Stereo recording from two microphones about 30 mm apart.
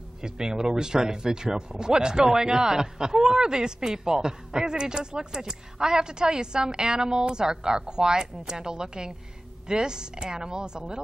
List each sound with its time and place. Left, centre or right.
0.2 s speech: right